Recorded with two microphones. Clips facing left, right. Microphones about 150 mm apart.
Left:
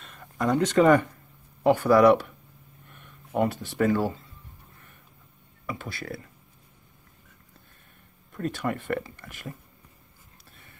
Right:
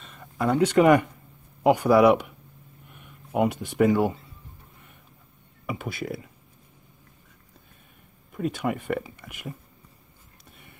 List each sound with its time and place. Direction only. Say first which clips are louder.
0.0 s a sound: right 1 dB; centre (ahead or behind)
1.6 s speech: right 1 dB; 10° right (ahead or behind)
5.9 s speech: right 5 dB; 20° right (ahead or behind)
8.3 s speech: right 2 dB; 5° right (ahead or behind)